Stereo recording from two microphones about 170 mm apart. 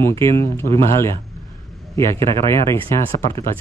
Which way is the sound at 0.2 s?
15° left (ahead or behind).